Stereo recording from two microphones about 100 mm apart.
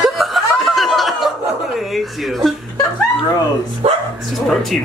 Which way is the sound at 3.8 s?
75° right (ahead or behind).